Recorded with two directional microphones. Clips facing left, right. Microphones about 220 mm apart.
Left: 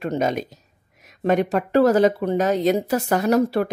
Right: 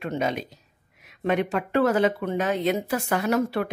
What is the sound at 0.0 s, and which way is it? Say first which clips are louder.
Speech: left 4 dB; 40° left (ahead or behind).